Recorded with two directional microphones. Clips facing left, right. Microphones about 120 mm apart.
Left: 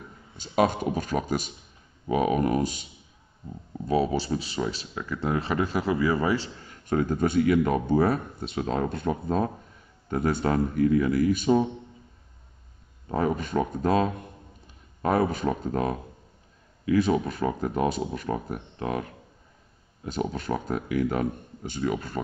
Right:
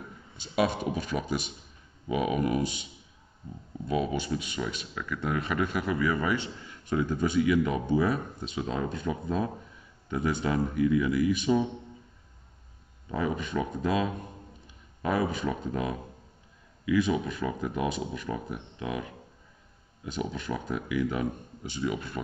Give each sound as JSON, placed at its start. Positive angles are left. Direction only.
{"t": 0.4, "sound": "speech", "side_deg": 45}
{"t": 13.1, "sound": "speech", "side_deg": 45}
{"t": 20.1, "sound": "speech", "side_deg": 45}